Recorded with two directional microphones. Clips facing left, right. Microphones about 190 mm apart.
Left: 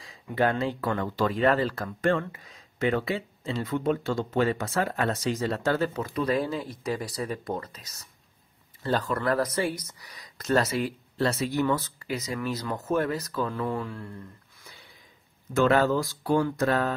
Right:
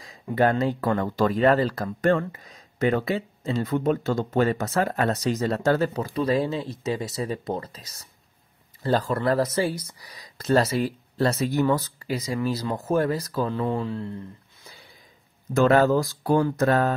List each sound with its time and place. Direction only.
0.0 s speech: 40° right (ahead or behind); by 14.1 s 25° right (ahead or behind)
15.5 s speech: 40° right (ahead or behind)